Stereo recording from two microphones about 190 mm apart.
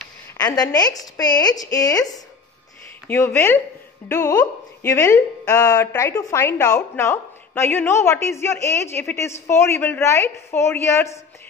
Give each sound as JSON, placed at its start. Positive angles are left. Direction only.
{"t": 0.6, "sound": "a woman's voice", "side_deg": 20}